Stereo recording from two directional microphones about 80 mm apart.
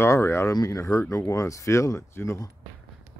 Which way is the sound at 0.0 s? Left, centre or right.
Left.